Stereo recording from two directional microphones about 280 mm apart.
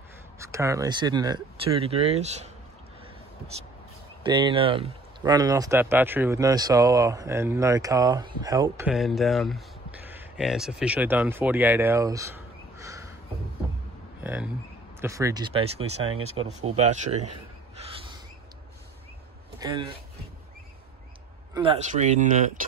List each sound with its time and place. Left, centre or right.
0.4 s speech: centre
4.2 s speech: centre
14.2 s a sound: centre
15.0 s a man's voice: centre
21.5 s speech: right